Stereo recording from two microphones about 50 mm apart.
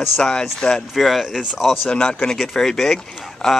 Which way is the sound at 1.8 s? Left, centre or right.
Centre.